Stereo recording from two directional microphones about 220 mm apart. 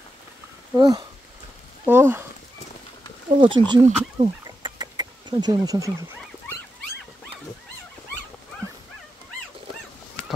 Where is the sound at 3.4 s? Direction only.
20° right (ahead or behind).